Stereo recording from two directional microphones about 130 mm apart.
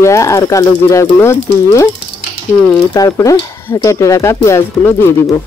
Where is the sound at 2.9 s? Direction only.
25° left (ahead or behind).